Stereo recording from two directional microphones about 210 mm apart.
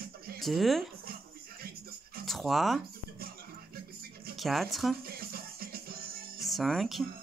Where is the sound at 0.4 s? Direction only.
Centre (ahead or behind).